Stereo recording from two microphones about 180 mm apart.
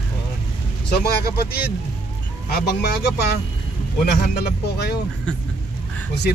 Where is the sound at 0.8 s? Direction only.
60° left (ahead or behind).